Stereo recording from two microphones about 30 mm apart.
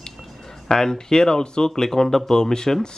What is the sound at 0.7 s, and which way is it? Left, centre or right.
Speech, left.